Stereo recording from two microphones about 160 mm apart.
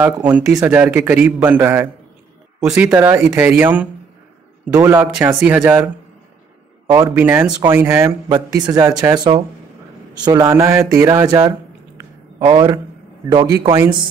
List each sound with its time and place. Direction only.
0.0 s a man's voice: 10° right (ahead or behind)
6.9 s a man's voice: 10° right (ahead or behind)
8.3 s speech: 25° right (ahead or behind)
8.8 s a man's voice: 15° right (ahead or behind)
10.2 s a man's voice: 20° right (ahead or behind)